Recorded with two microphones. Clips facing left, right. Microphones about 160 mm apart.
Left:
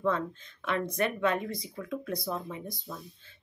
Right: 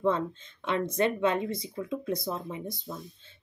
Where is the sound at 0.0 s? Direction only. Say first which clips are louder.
Right 2 dB; 25° right (ahead or behind).